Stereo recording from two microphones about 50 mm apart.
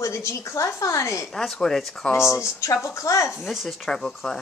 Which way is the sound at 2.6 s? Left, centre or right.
Left.